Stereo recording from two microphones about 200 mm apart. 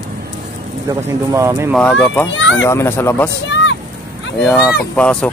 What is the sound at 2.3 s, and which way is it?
Speech, 70° left (ahead or behind).